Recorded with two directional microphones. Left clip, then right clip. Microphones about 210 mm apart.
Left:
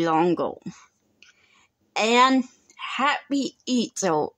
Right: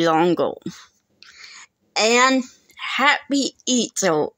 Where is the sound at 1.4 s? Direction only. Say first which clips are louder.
Right 17 dB; 10° right (ahead or behind); by 2.6 s 10° left (ahead or behind).